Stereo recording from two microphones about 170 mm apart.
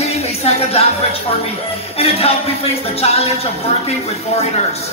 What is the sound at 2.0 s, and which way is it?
Speech, 35° left (ahead or behind).